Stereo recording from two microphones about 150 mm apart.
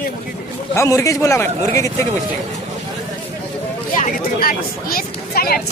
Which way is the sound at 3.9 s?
70° left (ahead or behind).